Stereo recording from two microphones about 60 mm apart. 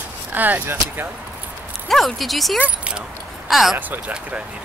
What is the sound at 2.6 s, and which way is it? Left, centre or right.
Speech, centre.